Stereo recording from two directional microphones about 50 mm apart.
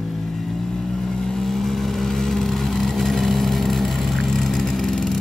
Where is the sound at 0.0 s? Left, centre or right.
Centre.